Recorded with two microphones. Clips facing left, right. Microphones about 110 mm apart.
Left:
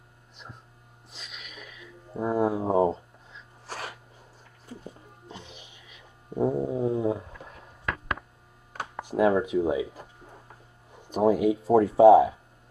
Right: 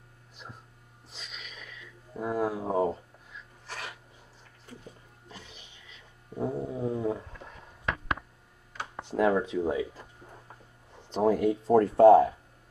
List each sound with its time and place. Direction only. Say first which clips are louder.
0.4 s a sound: even; centre (ahead or behind)
2.1 s speech: left 4 dB; 25° left (ahead or behind)
3.6 s sneeze: left 4 dB; 35° left (ahead or behind)
5.3 s music: left 4 dB; 20° left (ahead or behind)
6.3 s a sound: left 6 dB; 20° left (ahead or behind)
9.0 s speech: left 3 dB; 10° left (ahead or behind)
11.1 s speech: left 3 dB; 10° left (ahead or behind)